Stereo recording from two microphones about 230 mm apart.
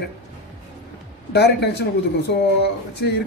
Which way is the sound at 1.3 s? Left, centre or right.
Left.